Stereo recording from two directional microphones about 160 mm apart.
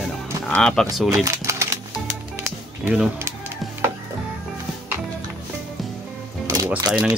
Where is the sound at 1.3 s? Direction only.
20° right (ahead or behind).